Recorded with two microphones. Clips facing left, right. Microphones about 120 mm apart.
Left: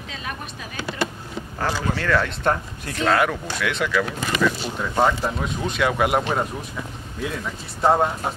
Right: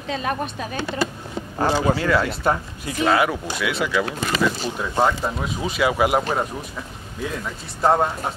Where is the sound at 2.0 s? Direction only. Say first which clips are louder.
Right 2 dB; 10° right (ahead or behind).